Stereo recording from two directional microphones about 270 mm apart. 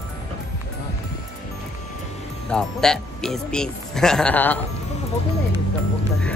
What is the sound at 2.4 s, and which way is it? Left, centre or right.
Speech, centre.